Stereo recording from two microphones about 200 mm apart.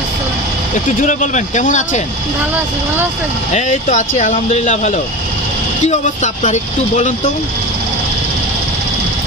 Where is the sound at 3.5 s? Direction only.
35° left (ahead or behind).